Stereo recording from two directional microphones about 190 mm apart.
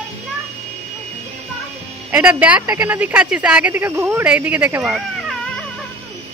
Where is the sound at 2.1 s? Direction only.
10° right (ahead or behind).